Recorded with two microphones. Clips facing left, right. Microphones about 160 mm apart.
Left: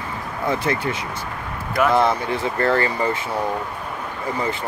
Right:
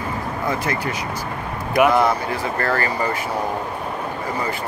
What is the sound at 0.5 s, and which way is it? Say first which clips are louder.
Speech: left 3 dB; 25° left (ahead or behind).